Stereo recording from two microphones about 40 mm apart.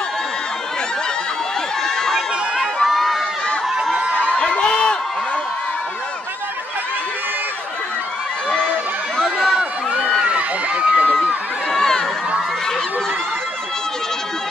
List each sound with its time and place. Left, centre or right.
2.0 s crowd: centre
2.8 s run: centre
4.1 s a sound: left
10.2 s run: right
11.7 s crowd: centre